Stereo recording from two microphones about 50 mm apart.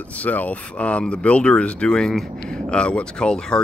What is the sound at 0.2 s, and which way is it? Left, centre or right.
Speech, left.